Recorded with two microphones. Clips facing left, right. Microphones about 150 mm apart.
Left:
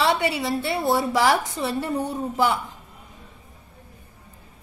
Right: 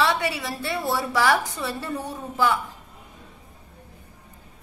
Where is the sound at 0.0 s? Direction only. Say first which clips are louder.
Left 2 dB; 25° left (ahead or behind).